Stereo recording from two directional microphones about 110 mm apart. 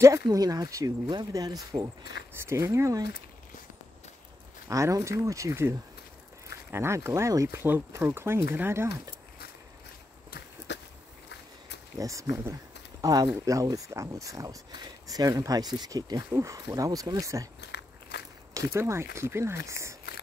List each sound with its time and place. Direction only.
0.3 s speech: 35° right (ahead or behind)
2.3 s speech: 25° right (ahead or behind)
4.6 s speech: 30° right (ahead or behind)
12.0 s speech: 30° right (ahead or behind)
18.5 s speech: 25° right (ahead or behind)